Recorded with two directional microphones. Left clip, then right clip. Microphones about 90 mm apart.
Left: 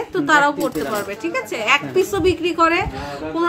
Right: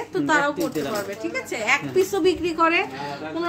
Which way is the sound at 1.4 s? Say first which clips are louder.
Left 5 dB; 15° left (ahead or behind).